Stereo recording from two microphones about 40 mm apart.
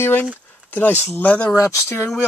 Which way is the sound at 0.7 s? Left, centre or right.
Left.